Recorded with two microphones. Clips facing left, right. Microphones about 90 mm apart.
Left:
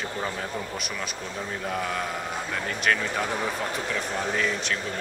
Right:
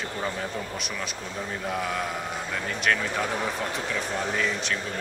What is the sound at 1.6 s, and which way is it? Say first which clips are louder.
Speech: even; centre (ahead or behind).